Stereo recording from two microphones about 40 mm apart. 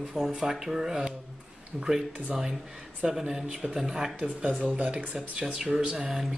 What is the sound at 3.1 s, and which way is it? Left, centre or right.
Speech, centre.